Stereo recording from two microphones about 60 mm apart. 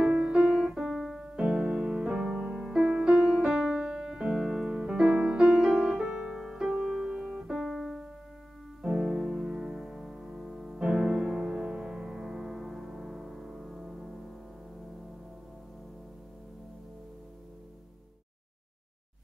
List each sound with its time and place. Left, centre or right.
0.0 s music: centre
0.7 s piano: centre
4.7 s music: centre
5.6 s music: centre
6.3 s piano: centre
8.8 s music: centre